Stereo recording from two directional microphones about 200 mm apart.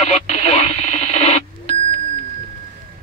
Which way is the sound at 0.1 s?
35° left (ahead or behind).